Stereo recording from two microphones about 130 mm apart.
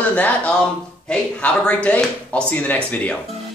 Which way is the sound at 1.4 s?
10° left (ahead or behind).